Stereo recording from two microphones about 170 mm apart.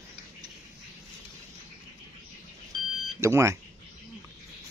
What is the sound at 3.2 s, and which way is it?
Speech, 15° right (ahead or behind).